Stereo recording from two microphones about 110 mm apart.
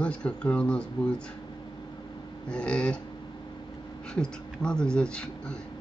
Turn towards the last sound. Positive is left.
turn(degrees=10)  # may be behind; listen again after turning